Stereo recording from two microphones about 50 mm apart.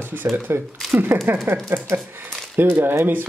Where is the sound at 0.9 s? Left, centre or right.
Right.